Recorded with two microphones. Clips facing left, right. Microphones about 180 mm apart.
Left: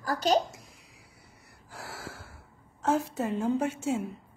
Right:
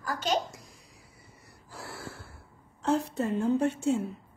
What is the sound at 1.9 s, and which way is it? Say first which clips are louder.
Gasp: right 1 dB; 90° left.